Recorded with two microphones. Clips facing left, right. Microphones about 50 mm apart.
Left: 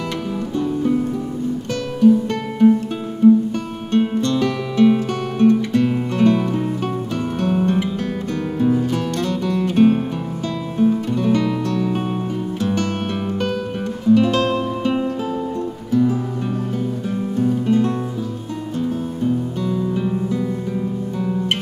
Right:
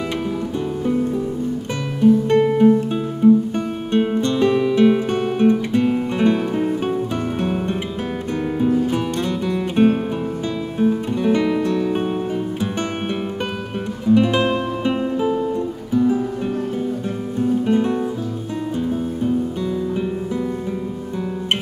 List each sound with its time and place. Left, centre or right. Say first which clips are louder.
2.6 s music: even; centre
8.9 s music: even; centre
14.0 s music: left 1 dB; centre
17.6 s music: left 1 dB; centre
19.2 s music: left 1 dB; centre